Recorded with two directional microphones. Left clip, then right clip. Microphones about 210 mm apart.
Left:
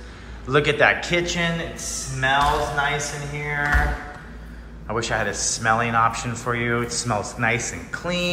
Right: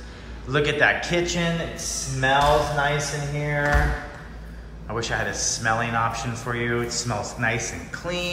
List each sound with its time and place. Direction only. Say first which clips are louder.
0.5 s a man's voice: left 2 dB; 10° right (ahead or behind)
4.8 s a man's voice: left 3 dB; 10° right (ahead or behind)